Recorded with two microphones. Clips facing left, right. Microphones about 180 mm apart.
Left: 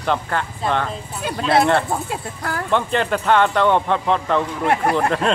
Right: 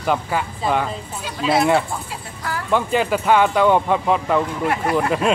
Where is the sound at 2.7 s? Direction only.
5° right (ahead or behind).